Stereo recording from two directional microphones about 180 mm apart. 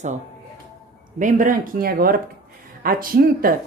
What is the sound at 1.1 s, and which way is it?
Speech, 45° right (ahead or behind).